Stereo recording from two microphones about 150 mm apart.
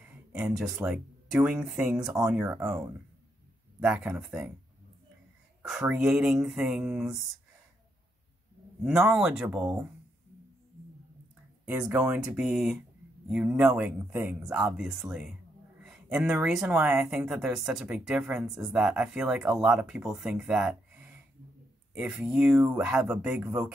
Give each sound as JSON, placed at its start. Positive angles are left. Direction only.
{"t": 0.1, "sound": "speech", "side_deg": -10}
{"t": 2.4, "sound": "speech", "side_deg": -20}
{"t": 3.8, "sound": "speech", "side_deg": -5}
{"t": 5.6, "sound": "speech", "side_deg": -5}
{"t": 8.8, "sound": "speech", "side_deg": -5}
{"t": 11.6, "sound": "speech", "side_deg": -10}
{"t": 15.8, "sound": "a sound", "side_deg": -5}
{"t": 16.4, "sound": "speech", "side_deg": -5}